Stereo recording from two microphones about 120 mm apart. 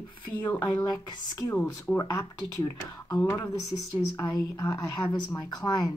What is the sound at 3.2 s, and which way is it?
Speech, 15° left (ahead or behind).